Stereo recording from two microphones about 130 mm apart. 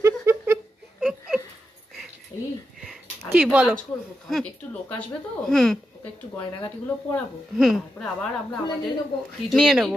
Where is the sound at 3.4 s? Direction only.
10° right (ahead or behind).